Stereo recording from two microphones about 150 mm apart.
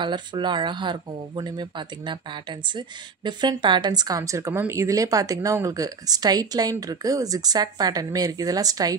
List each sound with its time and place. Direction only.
0.0 s speech: 30° right (ahead or behind)
3.3 s speech: 30° right (ahead or behind)